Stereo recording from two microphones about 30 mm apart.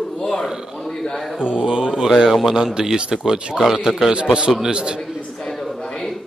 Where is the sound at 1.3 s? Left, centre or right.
Right.